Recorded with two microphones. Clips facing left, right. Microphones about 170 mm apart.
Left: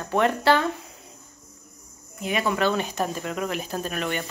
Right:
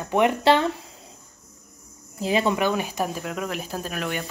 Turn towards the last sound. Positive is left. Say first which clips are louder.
# left 1 dB
turn(degrees=0)  # may be behind; listen again after turning